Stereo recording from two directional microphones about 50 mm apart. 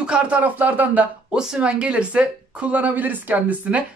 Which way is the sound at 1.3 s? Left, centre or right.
Centre.